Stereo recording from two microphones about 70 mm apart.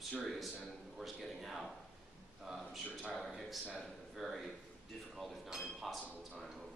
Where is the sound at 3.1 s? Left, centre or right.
Centre.